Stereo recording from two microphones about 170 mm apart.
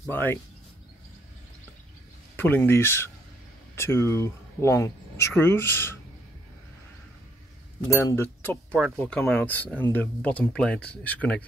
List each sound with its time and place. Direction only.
0.1 s speech: 10° left (ahead or behind)
2.3 s speech: 10° left (ahead or behind)
7.9 s speech: 20° left (ahead or behind)
8.7 s speech: centre (ahead or behind)